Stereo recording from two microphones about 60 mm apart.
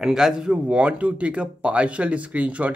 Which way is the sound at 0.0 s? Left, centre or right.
Centre.